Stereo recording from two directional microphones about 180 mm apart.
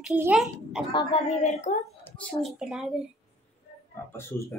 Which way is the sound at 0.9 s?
25° left (ahead or behind).